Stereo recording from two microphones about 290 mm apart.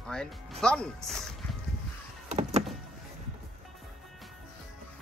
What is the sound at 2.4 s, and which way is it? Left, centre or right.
Vehicle, right.